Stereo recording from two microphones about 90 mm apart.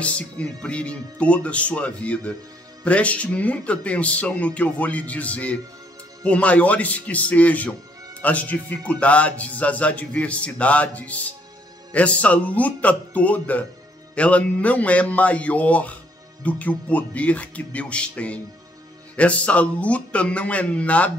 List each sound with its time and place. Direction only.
0.0 s speech: 15° left (ahead or behind)